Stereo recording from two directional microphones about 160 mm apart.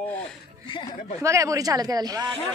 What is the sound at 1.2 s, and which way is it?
Speech, 20° right (ahead or behind).